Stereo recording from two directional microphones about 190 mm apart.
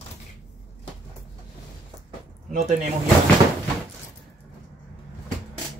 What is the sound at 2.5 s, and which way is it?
Speech, 40° right (ahead or behind).